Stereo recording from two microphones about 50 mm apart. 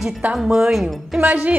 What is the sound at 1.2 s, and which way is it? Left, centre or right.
Speech, right.